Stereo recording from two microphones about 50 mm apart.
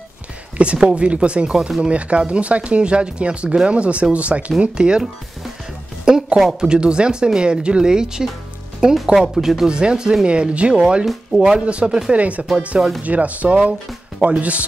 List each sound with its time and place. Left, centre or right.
0.7 s speech: right
6.0 s speech: centre
9.7 s speech: centre
11.5 s speech: right